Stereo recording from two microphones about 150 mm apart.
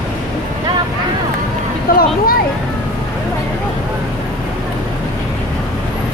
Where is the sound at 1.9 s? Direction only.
80° left.